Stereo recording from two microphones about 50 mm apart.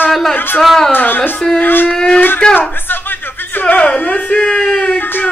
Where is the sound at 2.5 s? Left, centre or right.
Left.